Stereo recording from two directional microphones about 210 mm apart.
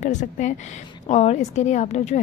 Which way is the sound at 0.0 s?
35° left (ahead or behind).